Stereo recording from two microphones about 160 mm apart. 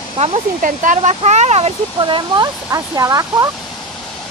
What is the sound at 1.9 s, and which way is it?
Speech, 30° right (ahead or behind).